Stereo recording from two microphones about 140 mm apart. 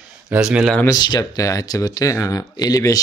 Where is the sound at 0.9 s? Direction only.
30° left (ahead or behind).